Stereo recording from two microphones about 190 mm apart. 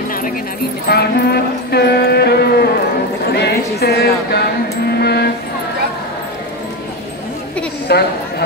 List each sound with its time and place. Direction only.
0.8 s speech: 55° left (ahead or behind)
4.8 s a sound: 55° left (ahead or behind)
7.9 s speech: 60° left (ahead or behind)